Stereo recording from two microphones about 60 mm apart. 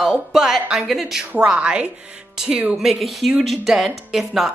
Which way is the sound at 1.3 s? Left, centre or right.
Right.